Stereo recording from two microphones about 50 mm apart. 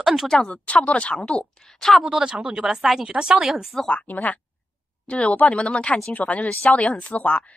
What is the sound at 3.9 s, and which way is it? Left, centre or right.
A woman's voice, left.